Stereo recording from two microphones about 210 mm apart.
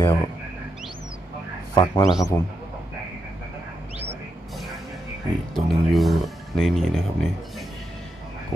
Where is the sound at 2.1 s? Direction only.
15° left (ahead or behind).